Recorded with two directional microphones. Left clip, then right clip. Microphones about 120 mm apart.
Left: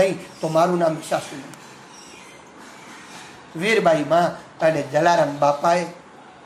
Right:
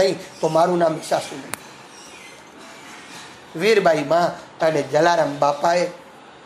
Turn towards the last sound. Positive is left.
turn(degrees=-10)  # may be behind; listen again after turning